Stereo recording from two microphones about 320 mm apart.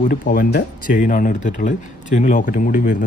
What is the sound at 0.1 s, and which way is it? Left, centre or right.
Speech, left.